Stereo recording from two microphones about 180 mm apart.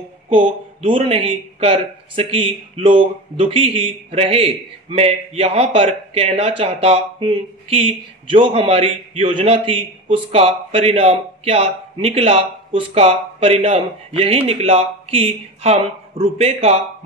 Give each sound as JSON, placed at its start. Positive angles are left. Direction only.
{"t": 0.3, "sound": "a man's voice", "side_deg": -30}